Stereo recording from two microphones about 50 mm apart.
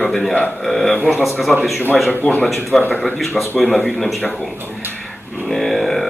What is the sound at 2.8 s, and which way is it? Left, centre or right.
Speech, left.